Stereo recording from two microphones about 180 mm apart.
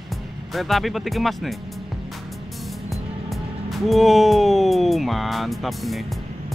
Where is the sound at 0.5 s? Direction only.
Centre (ahead or behind).